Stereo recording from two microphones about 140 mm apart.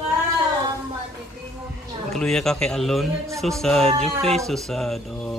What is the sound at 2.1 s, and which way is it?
Speech, 5° left (ahead or behind).